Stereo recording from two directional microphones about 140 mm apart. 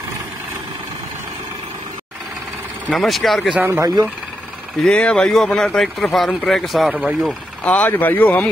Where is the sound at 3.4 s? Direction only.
10° right (ahead or behind).